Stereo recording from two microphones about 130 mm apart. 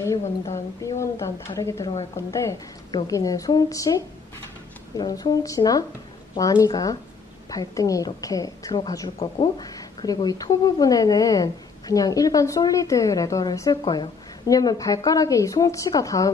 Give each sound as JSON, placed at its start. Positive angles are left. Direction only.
{"t": 0.8, "sound": "a woman's voice", "side_deg": 25}